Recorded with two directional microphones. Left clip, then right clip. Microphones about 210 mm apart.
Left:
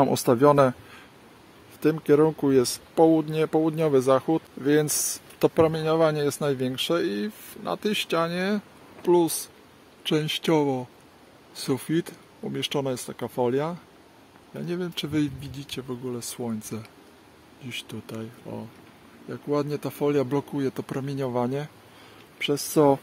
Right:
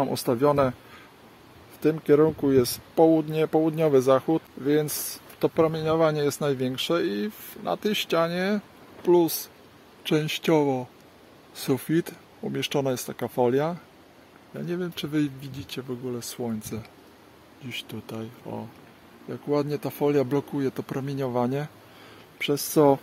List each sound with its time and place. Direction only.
0.0 s speech: 20° left (ahead or behind)
1.8 s speech: 10° left (ahead or behind)